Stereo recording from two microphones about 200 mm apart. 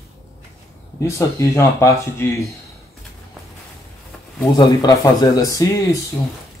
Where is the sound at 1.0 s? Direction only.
15° left (ahead or behind).